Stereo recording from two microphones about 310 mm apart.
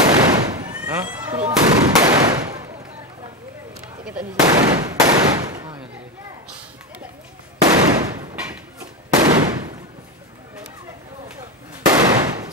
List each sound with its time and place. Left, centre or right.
0.0 s gunshot: centre
4.0 s gunshot: centre
7.6 s a sound: centre
9.2 s gunshot: centre
11.9 s firecracker: centre